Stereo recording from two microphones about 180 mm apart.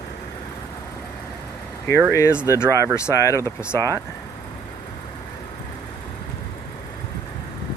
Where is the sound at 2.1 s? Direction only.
15° left (ahead or behind).